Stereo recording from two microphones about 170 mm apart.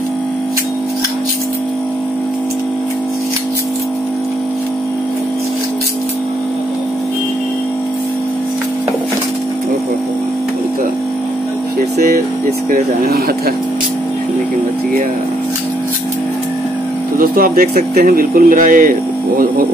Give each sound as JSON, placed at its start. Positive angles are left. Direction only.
{"t": 17.2, "sound": "speech", "side_deg": -60}